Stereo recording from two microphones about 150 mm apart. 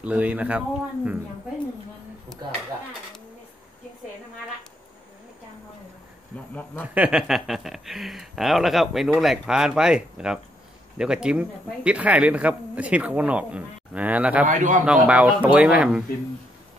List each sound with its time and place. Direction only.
0.0 s speech: 10° right (ahead or behind)
6.5 s a man's voice: 10° left (ahead or behind)
6.9 s speech: 10° right (ahead or behind)
14.5 s a man's voice: 60° right (ahead or behind)
15.0 s speech: 10° right (ahead or behind)